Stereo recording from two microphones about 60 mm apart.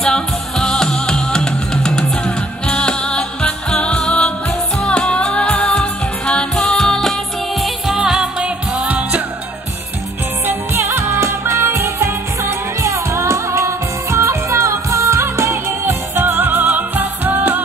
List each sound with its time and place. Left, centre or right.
0.0 s music: centre; by 9.2 s right
10.4 s music: right
15.8 s music: right